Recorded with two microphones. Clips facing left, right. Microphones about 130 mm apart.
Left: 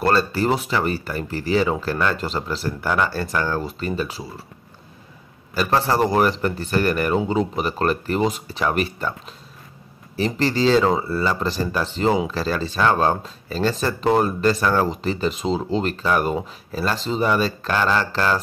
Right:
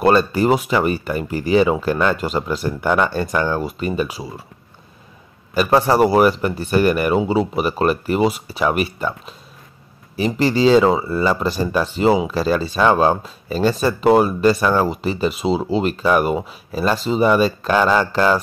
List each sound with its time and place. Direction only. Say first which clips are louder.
0.0 s speech: right 4 dB; 15° right (ahead or behind)
5.5 s speech: right 5 dB; 15° right (ahead or behind)
10.1 s speech: right 3 dB; 10° right (ahead or behind)